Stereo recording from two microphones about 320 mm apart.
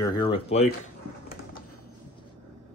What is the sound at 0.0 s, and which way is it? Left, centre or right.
Chuckle, centre.